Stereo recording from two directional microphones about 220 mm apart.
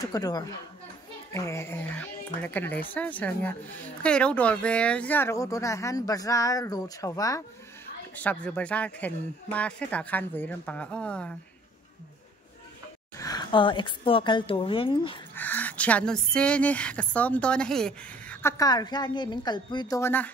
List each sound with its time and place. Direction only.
0.1 s speech: 15° left (ahead or behind)
13.2 s speech: 15° left (ahead or behind)
15.3 s speech: 5° left (ahead or behind)